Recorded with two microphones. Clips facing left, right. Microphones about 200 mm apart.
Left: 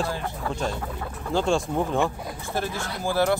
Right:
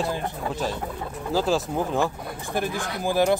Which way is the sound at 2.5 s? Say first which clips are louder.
Right 2 dB; 15° right (ahead or behind).